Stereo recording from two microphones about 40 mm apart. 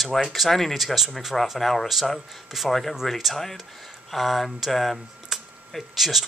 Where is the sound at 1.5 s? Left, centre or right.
Centre.